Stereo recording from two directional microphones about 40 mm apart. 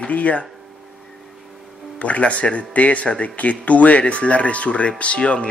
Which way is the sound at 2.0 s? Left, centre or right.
Left.